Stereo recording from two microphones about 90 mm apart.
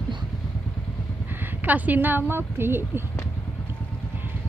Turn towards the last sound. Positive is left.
turn(degrees=-25)  # may be behind; listen again after turning